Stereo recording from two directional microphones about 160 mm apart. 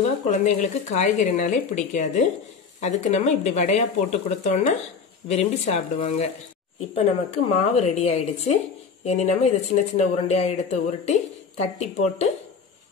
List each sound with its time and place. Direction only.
0.2 s speech: 45° left (ahead or behind)
7.2 s speech: 40° left (ahead or behind)